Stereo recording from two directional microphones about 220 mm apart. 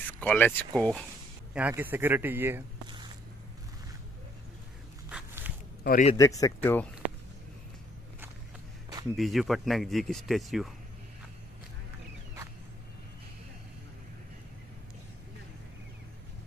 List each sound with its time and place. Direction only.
0.2 s speech: 5° left (ahead or behind)
1.5 s a man's voice: 10° right (ahead or behind)
5.1 s a sound: 10° right (ahead or behind)
5.9 s a man's voice: 35° left (ahead or behind)
6.1 s speech: 15° left (ahead or behind)
9.1 s speech: centre (ahead or behind)